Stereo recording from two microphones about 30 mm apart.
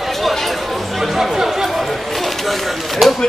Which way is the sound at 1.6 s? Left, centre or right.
Centre.